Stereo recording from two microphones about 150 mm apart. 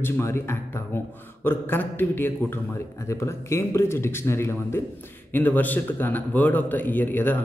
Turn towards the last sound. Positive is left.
turn(degrees=10)  # may be behind; listen again after turning